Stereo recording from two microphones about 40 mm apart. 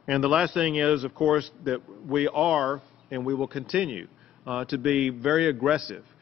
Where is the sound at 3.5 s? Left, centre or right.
Right.